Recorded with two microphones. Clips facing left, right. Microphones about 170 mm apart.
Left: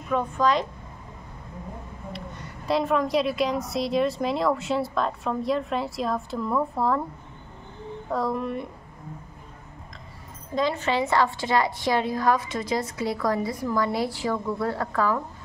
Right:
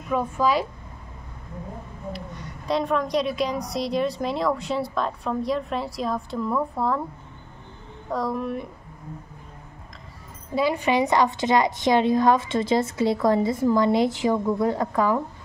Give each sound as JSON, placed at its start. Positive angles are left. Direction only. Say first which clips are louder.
{"t": 0.1, "sound": "speech", "louder": "right 1 dB", "side_deg": -5}
{"t": 2.1, "sound": "a woman's voice", "louder": "right 1 dB", "side_deg": 0}
{"t": 8.1, "sound": "a woman's voice", "louder": "even", "side_deg": 0}
{"t": 10.5, "sound": "a woman's voice", "louder": "right 3 dB", "side_deg": -10}